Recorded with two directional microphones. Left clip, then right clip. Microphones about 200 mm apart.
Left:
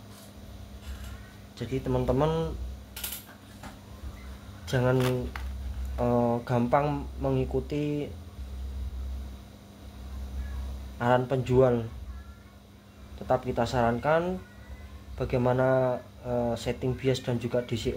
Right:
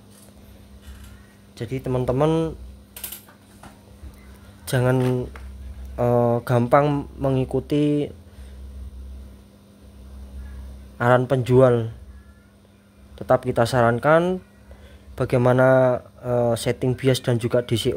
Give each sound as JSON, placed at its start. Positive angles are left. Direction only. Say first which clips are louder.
{"t": 1.6, "sound": "speech", "louder": "right 4 dB", "side_deg": -55}
{"t": 4.6, "sound": "speech", "louder": "right 5 dB", "side_deg": -55}
{"t": 11.0, "sound": "speech", "louder": "right 7 dB", "side_deg": -60}
{"t": 13.3, "sound": "speech", "louder": "right 8 dB", "side_deg": -60}